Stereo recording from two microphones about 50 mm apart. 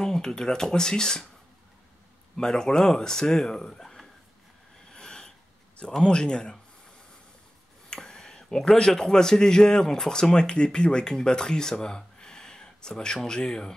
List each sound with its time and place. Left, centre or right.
0.0 s speech: centre
2.3 s speech: centre
4.8 s a sound: centre
5.9 s speech: centre
7.9 s speech: centre